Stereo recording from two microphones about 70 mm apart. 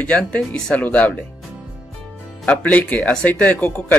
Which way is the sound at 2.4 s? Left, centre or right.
Centre.